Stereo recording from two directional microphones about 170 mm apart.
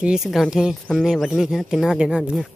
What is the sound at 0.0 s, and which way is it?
Speech, 5° right (ahead or behind).